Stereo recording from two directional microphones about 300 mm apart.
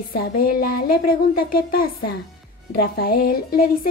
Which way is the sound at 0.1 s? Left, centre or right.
Left.